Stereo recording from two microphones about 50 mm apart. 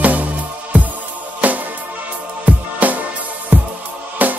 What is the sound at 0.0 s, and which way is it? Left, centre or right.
Music, right.